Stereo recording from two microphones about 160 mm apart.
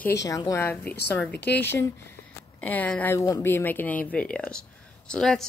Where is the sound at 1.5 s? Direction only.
90° left.